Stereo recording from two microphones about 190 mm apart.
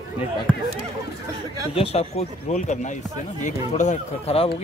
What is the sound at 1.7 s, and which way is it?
Speech, 30° left (ahead or behind).